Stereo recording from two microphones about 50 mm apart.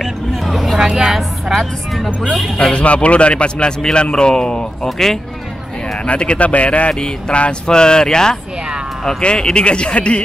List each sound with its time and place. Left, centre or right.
0.0 s hubbub: centre
0.8 s a woman's voice: centre
2.5 s speech: centre
2.8 s speech: left; by 5.2 s centre
6.0 s speech: left